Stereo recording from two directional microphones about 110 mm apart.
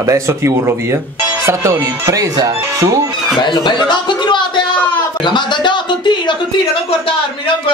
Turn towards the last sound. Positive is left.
turn(degrees=45)  # may be behind; listen again after turning